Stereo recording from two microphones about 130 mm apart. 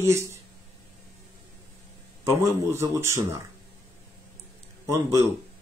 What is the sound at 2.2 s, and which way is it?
A man's voice, 20° right (ahead or behind).